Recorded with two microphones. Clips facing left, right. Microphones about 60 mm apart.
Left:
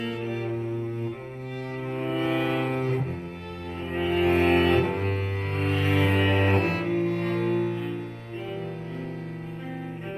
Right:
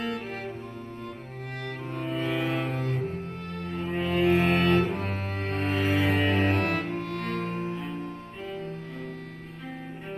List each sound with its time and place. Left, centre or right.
0.0 s cello: centre
2.0 s cello: centre
2.7 s cello: left
3.7 s cello: centre
4.8 s cello: left
5.5 s cello: centre
7.0 s cello: right
7.3 s cello: left